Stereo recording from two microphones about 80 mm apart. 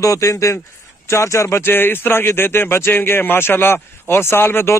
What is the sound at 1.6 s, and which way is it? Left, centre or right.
A man's voice, left.